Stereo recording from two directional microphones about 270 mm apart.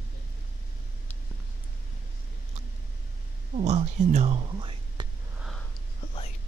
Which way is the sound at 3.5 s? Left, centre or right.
Right.